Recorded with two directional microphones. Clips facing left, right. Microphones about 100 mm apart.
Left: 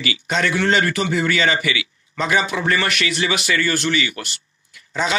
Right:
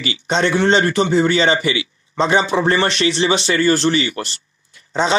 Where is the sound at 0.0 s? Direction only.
30° right (ahead or behind).